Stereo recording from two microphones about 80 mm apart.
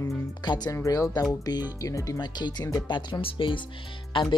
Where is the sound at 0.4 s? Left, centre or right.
Left.